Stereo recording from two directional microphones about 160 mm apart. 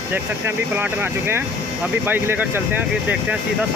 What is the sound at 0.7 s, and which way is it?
Speech, 15° right (ahead or behind).